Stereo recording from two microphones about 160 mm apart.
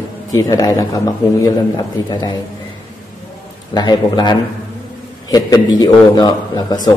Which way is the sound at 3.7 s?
25° left (ahead or behind).